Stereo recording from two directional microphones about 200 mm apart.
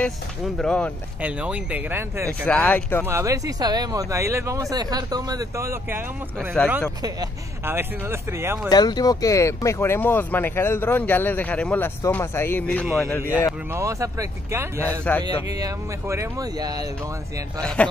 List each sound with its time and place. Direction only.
0.6 s speech: 5° left (ahead or behind)
1.2 s speech: 5° right (ahead or behind)
2.4 s speech: 10° left (ahead or behind)
3.1 s speech: 15° right (ahead or behind)
8.6 s speech: 20° left (ahead or behind); by 13.1 s centre (ahead or behind)
13.7 s speech: 15° right (ahead or behind)
14.8 s speech: 10° left (ahead or behind)
15.2 s speech: 20° right (ahead or behind)
17.6 s speech: 5° left (ahead or behind)